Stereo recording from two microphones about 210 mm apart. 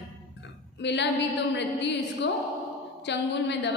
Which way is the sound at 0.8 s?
55° left (ahead or behind).